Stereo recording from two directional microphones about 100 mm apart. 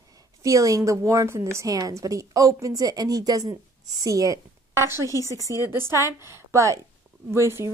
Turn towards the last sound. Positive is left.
turn(degrees=-25)  # may be behind; listen again after turning